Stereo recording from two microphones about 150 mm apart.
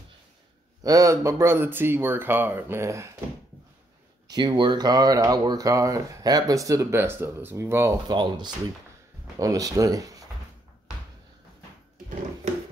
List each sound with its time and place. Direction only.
0.8 s speech: 20° right (ahead or behind)
4.3 s speech: 30° right (ahead or behind)
8.1 s speech: 30° right (ahead or behind)